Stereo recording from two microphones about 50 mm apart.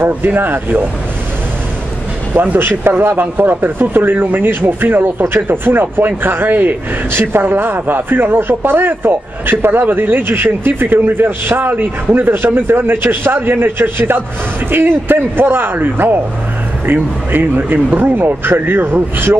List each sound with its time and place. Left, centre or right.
0.0 s speech: right
2.6 s speech: right